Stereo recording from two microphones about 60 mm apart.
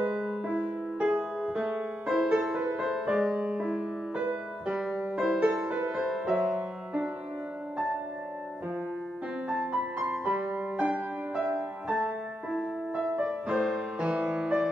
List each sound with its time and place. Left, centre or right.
0.5 s music: centre
5.5 s music: centre
6.0 s music: centre
6.5 s music: centre
9.5 s music: right